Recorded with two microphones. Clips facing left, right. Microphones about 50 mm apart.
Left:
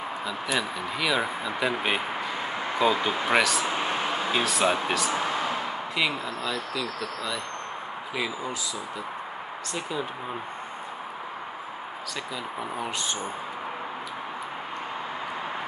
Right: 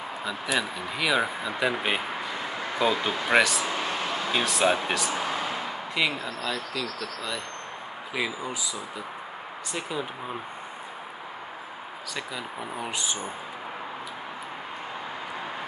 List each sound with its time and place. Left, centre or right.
0.2 s speech: centre
2.3 s a sound: centre
2.8 s speech: centre
3.6 s a sound: centre
4.3 s speech: centre
9.8 s speech: centre
12.5 s speech: centre